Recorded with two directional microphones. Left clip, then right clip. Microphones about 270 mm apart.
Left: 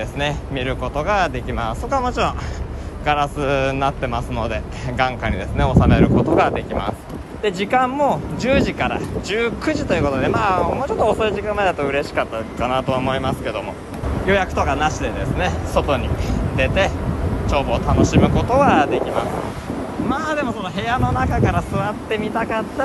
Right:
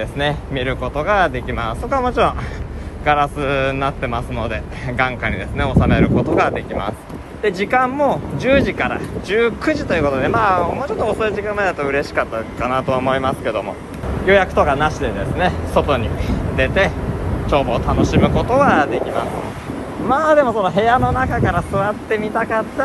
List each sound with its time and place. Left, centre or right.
0.2 s speech: centre
20.1 s speech: centre